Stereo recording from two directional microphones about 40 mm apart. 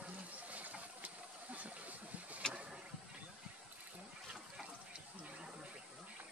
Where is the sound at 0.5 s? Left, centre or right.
Right.